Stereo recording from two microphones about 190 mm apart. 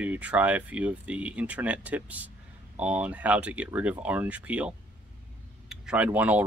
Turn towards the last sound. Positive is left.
turn(degrees=-10)  # may be behind; listen again after turning